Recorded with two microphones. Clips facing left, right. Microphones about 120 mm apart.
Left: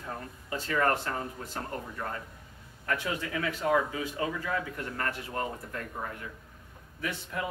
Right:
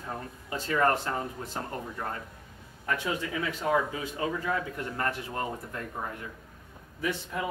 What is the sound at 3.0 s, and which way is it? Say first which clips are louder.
Speech: right 1 dB; 20° right (ahead or behind).